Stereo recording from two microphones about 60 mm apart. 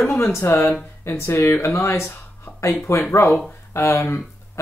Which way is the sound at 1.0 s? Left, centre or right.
Left.